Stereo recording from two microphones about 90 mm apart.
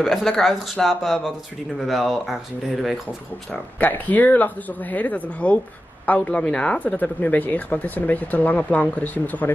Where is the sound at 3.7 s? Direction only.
20° left (ahead or behind).